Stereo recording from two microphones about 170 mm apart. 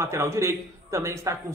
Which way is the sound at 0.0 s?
15° right (ahead or behind).